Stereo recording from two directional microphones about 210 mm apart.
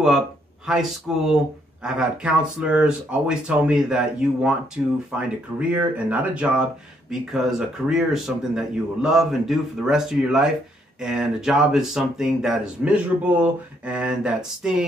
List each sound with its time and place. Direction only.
0.7 s speech: centre (ahead or behind)